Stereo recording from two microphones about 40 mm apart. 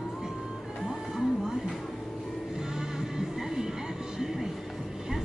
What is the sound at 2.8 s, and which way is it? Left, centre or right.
Music, centre.